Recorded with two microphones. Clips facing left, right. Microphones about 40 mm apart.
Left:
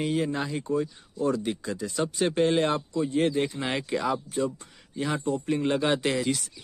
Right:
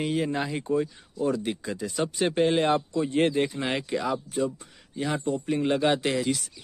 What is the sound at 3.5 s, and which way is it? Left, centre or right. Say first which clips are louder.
Speech: right 1 dB; centre.